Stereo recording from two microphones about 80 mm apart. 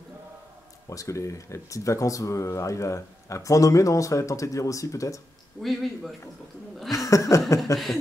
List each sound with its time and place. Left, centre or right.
0.8 s speech: left
5.6 s a man's voice: centre
7.1 s a sound: left
7.7 s a man's voice: centre